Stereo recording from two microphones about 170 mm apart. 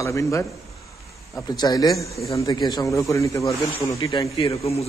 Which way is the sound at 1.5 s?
25° left (ahead or behind).